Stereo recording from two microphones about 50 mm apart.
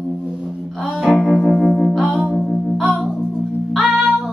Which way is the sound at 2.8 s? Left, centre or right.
Centre.